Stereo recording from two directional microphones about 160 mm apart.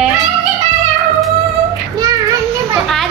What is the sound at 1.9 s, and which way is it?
Child singing, 20° right (ahead or behind).